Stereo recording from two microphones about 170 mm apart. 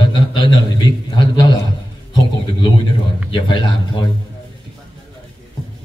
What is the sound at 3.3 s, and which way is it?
Speech, 30° left (ahead or behind).